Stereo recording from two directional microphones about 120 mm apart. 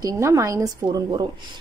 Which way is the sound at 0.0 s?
25° right (ahead or behind).